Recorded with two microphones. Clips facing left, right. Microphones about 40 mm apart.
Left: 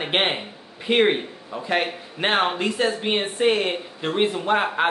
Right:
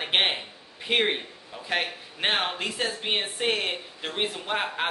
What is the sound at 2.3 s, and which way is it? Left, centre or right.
Speech, left.